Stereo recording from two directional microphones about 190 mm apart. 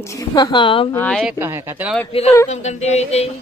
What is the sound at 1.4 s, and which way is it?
Speech, 15° right (ahead or behind).